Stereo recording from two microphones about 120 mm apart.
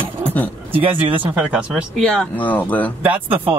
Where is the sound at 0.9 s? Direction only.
15° right (ahead or behind).